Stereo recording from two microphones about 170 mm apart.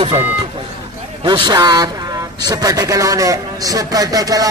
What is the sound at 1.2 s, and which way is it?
A man's voice, 25° right (ahead or behind).